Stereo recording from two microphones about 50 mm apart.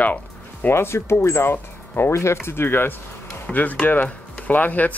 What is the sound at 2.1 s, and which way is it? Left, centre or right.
Speech, left.